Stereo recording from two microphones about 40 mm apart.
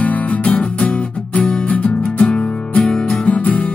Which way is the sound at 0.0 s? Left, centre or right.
Left.